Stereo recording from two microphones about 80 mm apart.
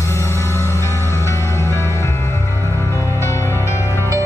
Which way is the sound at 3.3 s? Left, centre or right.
Left.